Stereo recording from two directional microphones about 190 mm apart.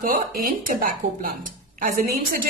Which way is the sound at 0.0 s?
50° right (ahead or behind).